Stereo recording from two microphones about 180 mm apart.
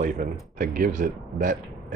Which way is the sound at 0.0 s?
45° right (ahead or behind).